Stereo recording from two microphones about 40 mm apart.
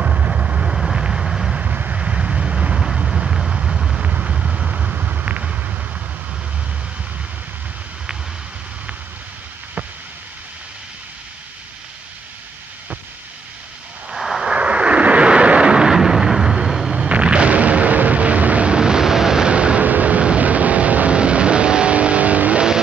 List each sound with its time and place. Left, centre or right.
0.0 s vehicle: right
0.7 s vehicle: centre
1.6 s vehicle: right
2.0 s vehicle: right
3.1 s vehicle: centre
4.0 s vehicle: right
4.3 s vehicle: right
14.1 s vehicle: centre
14.5 s vehicle: right
16.9 s artillery fire: right
18.8 s vehicle: centre
19.5 s vehicle: right
19.8 s vehicle: right
21.2 s vehicle: right